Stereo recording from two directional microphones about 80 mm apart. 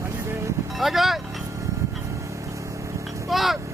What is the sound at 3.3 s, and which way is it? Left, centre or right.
Vehicle, centre.